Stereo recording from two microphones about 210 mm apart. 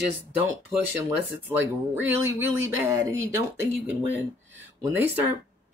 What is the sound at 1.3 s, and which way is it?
Speech, 10° right (ahead or behind).